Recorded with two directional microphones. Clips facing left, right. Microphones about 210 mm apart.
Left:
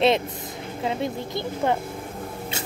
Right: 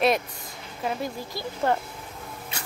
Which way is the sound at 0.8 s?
20° left (ahead or behind).